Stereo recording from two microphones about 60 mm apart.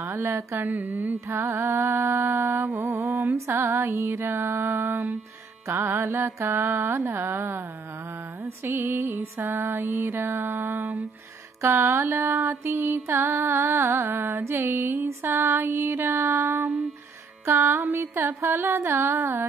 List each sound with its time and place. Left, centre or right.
0.0 s mantra: right
0.6 s music: right
0.9 s music: right
2.4 s music: right
6.0 s music: right
6.5 s music: right
11.6 s music: right
14.1 s music: right
17.8 s music: right